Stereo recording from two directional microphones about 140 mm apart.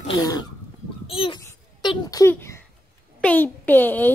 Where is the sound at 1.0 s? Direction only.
40° left (ahead or behind).